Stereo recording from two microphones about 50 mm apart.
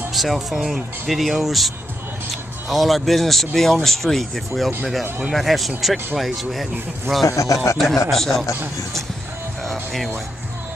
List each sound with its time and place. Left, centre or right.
0.1 s speech: centre
2.7 s speech: centre
7.2 s a man's voice: left
7.7 s speech: centre